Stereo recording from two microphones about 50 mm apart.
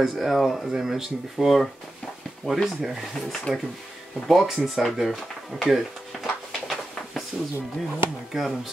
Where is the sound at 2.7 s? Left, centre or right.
Centre.